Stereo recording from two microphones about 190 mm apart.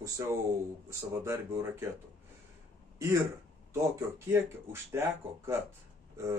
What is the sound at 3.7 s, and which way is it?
Speech, 15° right (ahead or behind).